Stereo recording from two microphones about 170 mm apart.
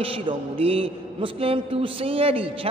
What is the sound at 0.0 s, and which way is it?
A man's voice, 30° right (ahead or behind).